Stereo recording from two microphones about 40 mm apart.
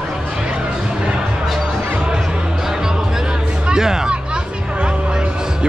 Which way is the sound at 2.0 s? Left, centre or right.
Centre.